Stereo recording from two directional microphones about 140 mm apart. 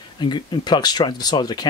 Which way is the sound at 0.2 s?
35° left (ahead or behind).